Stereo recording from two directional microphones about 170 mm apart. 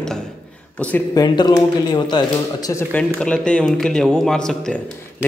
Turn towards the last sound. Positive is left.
turn(degrees=5)  # may be behind; listen again after turning